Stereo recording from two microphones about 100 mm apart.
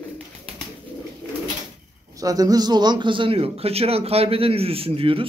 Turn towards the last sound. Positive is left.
turn(degrees=-70)  # may be behind; listen again after turning